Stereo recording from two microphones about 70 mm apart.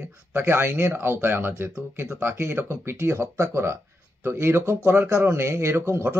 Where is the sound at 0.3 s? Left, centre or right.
Right.